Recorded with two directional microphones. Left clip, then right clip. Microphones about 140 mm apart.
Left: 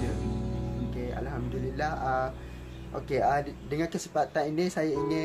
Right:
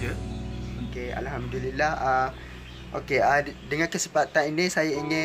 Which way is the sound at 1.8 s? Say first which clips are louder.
Right 6 dB; 25° right (ahead or behind).